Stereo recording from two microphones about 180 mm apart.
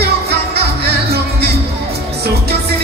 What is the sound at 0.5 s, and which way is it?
Music, 60° right (ahead or behind).